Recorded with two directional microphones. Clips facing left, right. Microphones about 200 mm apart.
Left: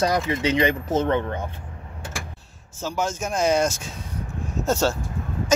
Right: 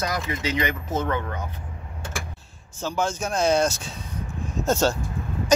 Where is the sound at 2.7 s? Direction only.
10° left (ahead or behind).